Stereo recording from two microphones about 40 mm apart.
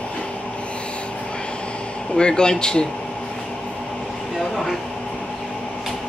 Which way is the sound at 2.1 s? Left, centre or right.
Left.